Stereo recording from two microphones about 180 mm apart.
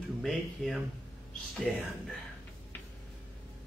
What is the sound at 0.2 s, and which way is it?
Speech, centre (ahead or behind).